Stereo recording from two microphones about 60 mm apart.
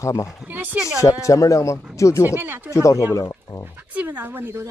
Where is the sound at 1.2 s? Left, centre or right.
Left.